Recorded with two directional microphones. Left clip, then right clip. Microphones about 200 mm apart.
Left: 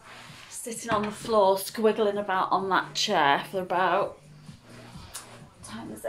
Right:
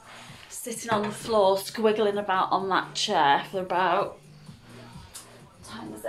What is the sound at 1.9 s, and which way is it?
Speech, centre (ahead or behind).